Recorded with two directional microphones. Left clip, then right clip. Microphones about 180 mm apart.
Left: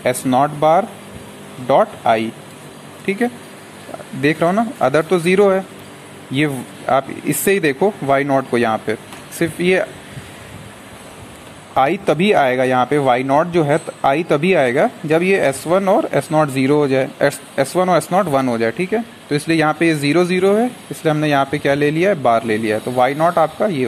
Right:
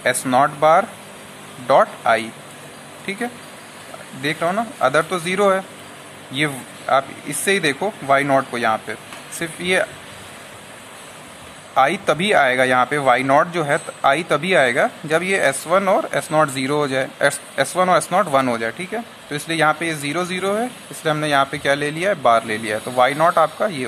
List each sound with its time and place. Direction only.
0.0 s speech: 10° left (ahead or behind)
6.9 s speech: 25° left (ahead or behind)
11.7 s speech: 20° left (ahead or behind)
13.3 s speech: centre (ahead or behind)
13.7 s speech: 15° left (ahead or behind)